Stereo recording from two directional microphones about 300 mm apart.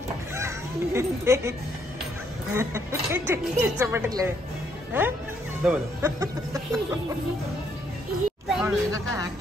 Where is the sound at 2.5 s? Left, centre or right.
Centre.